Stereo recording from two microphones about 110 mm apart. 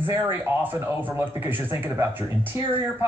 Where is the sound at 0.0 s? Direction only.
20° right (ahead or behind).